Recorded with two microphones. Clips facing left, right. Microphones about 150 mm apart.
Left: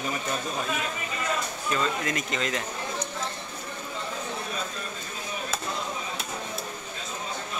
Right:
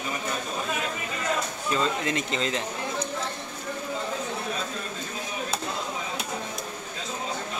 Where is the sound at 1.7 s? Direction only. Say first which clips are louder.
Right 2 dB; 25° right (ahead or behind).